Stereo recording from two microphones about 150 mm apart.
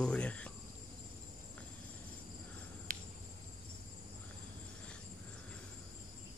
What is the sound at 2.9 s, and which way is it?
Cricket, 70° right (ahead or behind).